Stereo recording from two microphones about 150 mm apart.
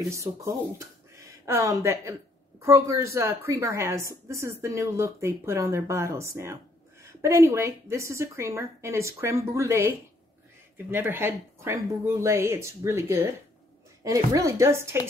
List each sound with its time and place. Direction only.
0.1 s a woman's voice: 20° right (ahead or behind)